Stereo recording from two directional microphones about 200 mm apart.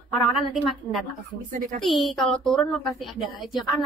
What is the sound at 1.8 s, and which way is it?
A woman's voice, centre (ahead or behind).